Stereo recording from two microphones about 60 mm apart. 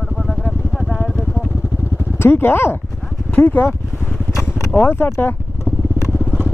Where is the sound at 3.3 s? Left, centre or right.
Left.